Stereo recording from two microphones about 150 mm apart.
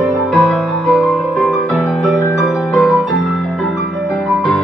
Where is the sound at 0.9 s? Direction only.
Centre (ahead or behind).